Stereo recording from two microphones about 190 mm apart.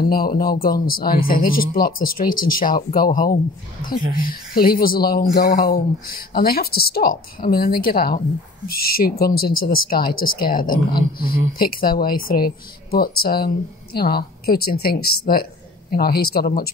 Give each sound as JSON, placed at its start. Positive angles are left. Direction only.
{"t": 0.1, "sound": "speech", "side_deg": 50}